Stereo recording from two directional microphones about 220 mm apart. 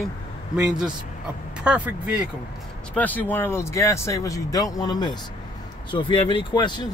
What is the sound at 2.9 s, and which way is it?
Speech, 5° left (ahead or behind).